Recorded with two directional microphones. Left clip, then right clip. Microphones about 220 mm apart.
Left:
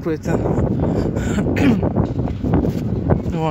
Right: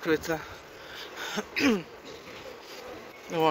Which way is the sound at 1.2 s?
10° left (ahead or behind).